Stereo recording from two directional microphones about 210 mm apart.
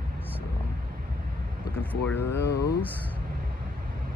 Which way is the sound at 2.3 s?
55° left (ahead or behind).